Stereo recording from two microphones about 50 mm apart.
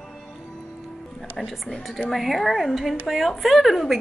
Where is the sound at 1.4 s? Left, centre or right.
Centre.